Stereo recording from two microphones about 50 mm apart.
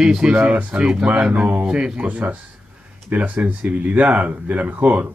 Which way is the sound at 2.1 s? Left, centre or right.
Right.